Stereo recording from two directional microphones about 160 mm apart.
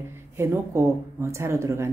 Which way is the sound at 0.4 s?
15° right (ahead or behind).